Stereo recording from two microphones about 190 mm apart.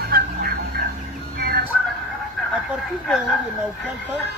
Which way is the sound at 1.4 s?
55° right (ahead or behind).